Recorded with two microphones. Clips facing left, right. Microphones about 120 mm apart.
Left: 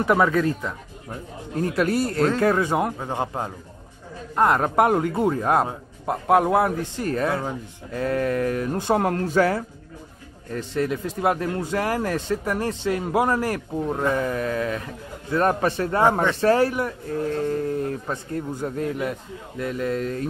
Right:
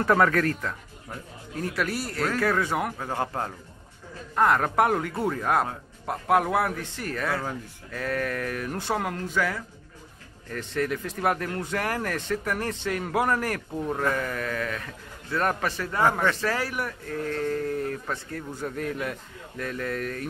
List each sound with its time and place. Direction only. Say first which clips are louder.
0.0 s a man's voice: left 2 dB; 15° left (ahead or behind)
9.0 s speech: left 8 dB; 40° left (ahead or behind)
10.6 s a man's voice: left 3 dB; 20° left (ahead or behind)